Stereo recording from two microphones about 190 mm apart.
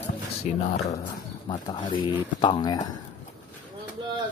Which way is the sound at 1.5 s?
25° left (ahead or behind).